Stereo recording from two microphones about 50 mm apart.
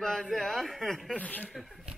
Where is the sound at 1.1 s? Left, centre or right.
Left.